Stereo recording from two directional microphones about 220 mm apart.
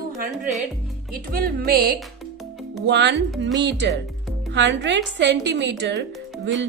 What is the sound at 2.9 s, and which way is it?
A woman's voice, 50° right (ahead or behind).